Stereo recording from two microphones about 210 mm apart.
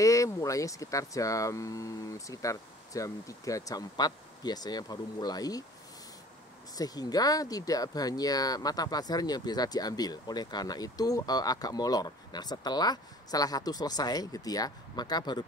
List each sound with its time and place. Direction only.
0.0 s speech: 15° left (ahead or behind)
6.7 s speech: 15° left (ahead or behind)